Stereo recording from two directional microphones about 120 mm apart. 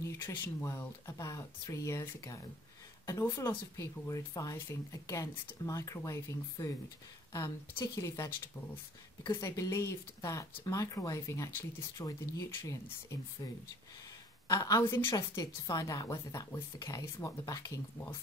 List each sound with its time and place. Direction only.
0.0 s speech: 25° left (ahead or behind)
9.3 s speech: 25° left (ahead or behind)
14.5 s speech: 30° left (ahead or behind)